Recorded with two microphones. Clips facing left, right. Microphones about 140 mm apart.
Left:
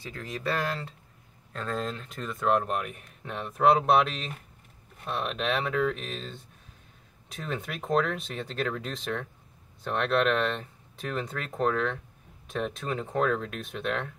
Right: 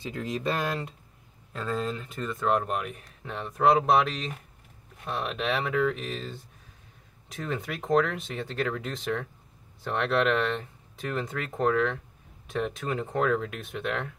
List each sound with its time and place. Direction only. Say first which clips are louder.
0.0 s speech: right 4 dB; 20° right (ahead or behind)
7.4 s speech: right 2 dB; centre (ahead or behind)